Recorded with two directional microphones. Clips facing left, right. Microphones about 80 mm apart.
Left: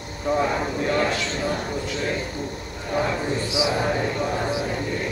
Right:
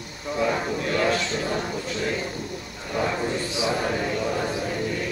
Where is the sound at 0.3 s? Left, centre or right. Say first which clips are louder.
Left 6 dB; left.